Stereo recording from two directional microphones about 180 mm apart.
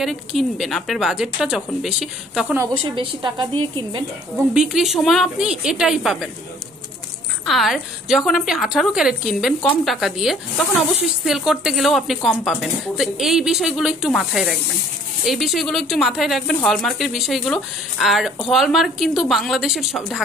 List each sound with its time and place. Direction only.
0.0 s speech: centre (ahead or behind)
2.8 s a woman's voice: 25° right (ahead or behind)
4.6 s speech: centre (ahead or behind)
7.4 s speech: centre (ahead or behind)